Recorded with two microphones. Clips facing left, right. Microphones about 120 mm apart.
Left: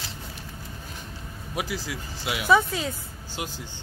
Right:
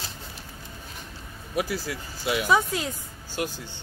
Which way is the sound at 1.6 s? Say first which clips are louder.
Right 3 dB; 15° left (ahead or behind).